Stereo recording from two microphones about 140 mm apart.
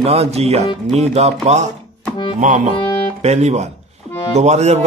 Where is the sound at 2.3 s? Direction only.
65° right (ahead or behind).